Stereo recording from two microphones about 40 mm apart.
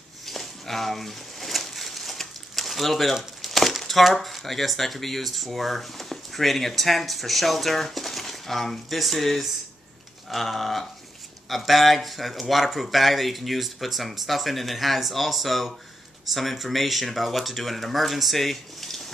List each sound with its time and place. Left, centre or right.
0.3 s pigeon: centre
3.4 s speech: centre